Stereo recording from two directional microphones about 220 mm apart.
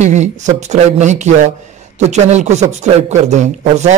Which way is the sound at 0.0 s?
30° right (ahead or behind).